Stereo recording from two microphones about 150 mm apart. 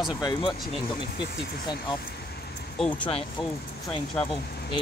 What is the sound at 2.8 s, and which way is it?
Speech, 10° left (ahead or behind).